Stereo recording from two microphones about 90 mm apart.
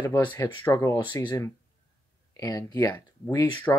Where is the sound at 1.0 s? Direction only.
55° left (ahead or behind).